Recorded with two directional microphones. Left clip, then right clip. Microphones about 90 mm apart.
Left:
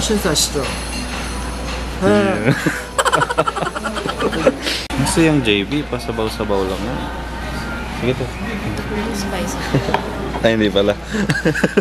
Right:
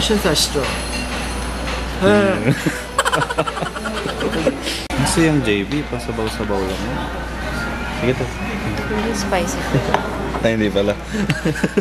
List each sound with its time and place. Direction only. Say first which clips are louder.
0.0 s speech: right 1 dB; 15° left (ahead or behind)
2.0 s speech: even; 15° left (ahead or behind)
3.0 s a sound: left 2 dB; centre (ahead or behind)
4.4 s speech: left 3 dB; 20° left (ahead or behind)
10.4 s speech: left 3 dB; 20° left (ahead or behind)